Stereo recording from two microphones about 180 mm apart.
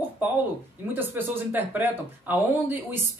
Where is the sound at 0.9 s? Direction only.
10° right (ahead or behind).